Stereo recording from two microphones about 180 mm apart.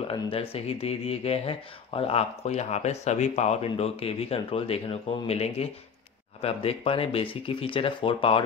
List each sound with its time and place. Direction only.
0.1 s speech: 30° left (ahead or behind)